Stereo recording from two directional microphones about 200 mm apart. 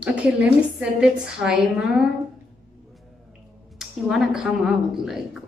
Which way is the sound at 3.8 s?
Centre (ahead or behind).